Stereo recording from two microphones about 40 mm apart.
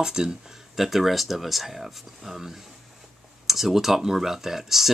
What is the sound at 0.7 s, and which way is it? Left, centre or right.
Speech, centre.